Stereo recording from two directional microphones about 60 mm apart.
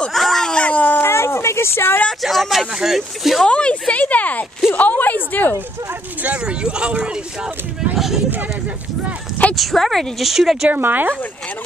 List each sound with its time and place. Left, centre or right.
0.1 s cat: centre
0.6 s howl: left
1.0 s a sound: left
2.2 s speech: centre
3.4 s speech: centre
4.0 s a sound: left
6.2 s speech: centre
7.9 s speech: centre
9.6 s speech: centre
10.7 s speech: right